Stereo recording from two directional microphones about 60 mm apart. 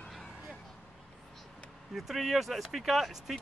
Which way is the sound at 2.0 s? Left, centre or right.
Centre.